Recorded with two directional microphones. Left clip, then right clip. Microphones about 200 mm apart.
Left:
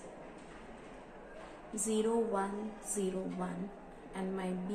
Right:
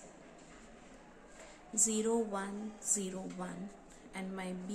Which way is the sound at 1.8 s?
35° right (ahead or behind).